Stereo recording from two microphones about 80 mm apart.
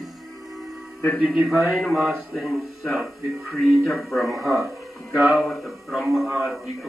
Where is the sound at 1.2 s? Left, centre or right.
Centre.